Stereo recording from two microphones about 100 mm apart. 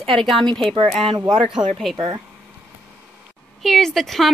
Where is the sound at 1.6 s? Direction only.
45° right (ahead or behind).